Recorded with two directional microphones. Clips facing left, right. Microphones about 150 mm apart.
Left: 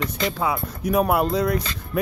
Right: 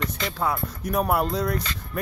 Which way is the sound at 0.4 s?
5° left (ahead or behind).